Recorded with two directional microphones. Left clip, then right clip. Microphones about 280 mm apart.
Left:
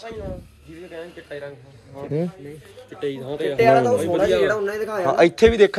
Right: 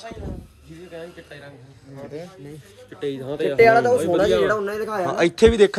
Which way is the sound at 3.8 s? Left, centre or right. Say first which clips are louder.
Right 1 dB; right.